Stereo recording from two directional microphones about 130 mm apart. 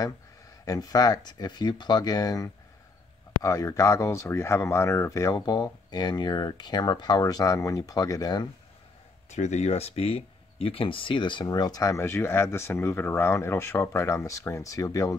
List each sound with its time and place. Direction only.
0.7 s speech: 30° left (ahead or behind)
9.3 s speech: 60° left (ahead or behind); by 15.1 s 25° left (ahead or behind)